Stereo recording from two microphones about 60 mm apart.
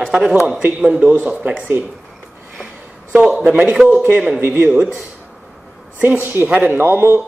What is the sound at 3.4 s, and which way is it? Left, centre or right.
Speech, right.